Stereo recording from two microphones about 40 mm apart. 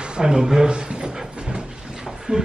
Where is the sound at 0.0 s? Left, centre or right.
Right.